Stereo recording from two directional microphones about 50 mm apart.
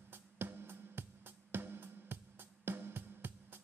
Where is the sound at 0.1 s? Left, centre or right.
Right.